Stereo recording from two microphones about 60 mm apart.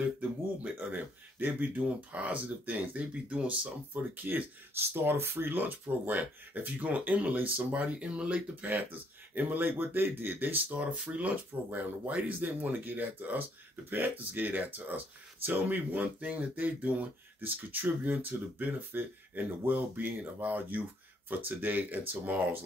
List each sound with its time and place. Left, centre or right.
0.2 s speech: right